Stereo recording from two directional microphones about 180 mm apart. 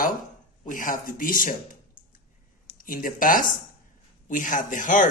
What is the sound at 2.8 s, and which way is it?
Speech, 50° left (ahead or behind).